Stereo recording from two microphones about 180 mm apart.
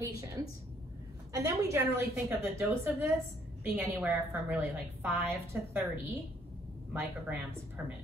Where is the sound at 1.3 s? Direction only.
15° right (ahead or behind).